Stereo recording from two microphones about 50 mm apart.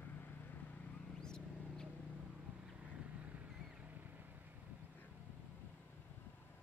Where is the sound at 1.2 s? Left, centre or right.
Centre.